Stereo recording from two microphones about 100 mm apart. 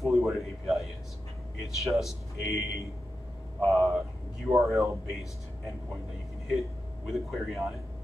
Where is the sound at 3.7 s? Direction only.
5° right (ahead or behind).